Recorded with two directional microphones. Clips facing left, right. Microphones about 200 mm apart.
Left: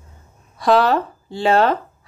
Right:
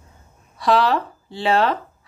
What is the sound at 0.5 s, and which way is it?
Speech, 45° left (ahead or behind).